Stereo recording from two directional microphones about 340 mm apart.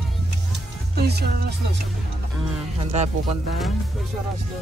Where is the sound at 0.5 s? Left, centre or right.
Right.